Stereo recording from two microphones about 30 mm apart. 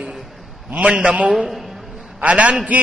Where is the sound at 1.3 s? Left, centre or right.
Centre.